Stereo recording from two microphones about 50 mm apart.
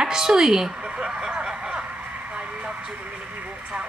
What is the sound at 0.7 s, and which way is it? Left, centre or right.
A woman's voice, centre.